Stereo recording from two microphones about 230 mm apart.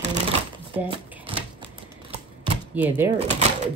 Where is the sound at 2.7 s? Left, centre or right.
Centre.